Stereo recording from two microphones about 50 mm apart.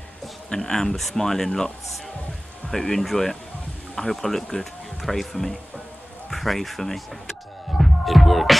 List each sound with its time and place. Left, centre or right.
0.5 s speech: centre
7.7 s music: centre